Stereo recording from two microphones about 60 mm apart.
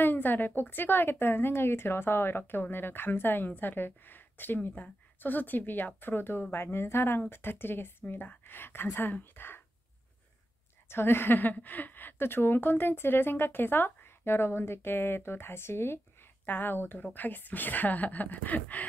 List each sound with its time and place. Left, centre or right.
0.0 s a woman's voice: left
10.9 s a woman's voice: left